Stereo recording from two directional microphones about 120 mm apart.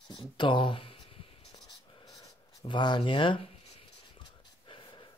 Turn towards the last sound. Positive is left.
turn(degrees=45)  # may be behind; listen again after turning